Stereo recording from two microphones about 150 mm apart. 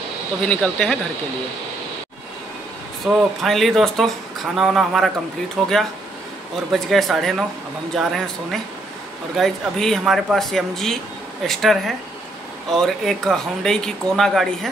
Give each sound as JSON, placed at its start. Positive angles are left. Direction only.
{"t": 0.5, "sound": "speech", "side_deg": 5}
{"t": 3.1, "sound": "speech", "side_deg": 0}